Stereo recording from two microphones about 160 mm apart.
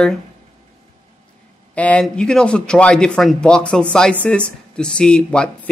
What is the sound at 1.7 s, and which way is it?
Speech, 10° left (ahead or behind).